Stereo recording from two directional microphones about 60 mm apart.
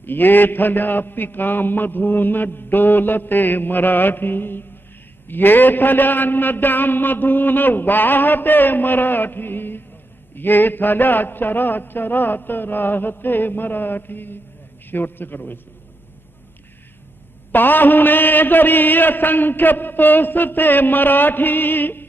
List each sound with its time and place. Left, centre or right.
0.0 s a man's voice: left
17.5 s a man's voice: left